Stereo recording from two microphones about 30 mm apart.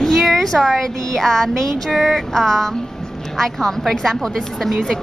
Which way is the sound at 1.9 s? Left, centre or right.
Centre.